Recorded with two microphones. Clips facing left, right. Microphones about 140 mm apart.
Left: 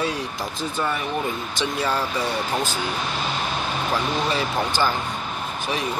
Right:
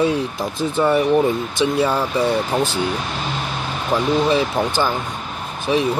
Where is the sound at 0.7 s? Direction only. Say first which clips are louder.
Right 11 dB; 30° right (ahead or behind).